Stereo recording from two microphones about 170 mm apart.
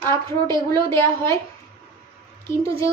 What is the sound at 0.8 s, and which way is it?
Speech, 15° left (ahead or behind).